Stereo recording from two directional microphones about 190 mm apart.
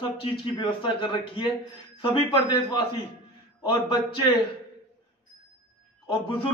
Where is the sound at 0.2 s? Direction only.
25° left (ahead or behind).